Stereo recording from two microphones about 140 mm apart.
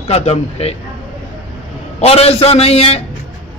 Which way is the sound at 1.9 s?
45° left (ahead or behind).